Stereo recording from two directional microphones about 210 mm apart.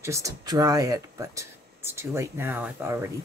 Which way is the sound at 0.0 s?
15° right (ahead or behind).